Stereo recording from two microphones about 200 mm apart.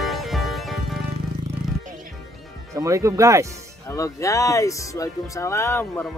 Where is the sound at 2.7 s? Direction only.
15° right (ahead or behind).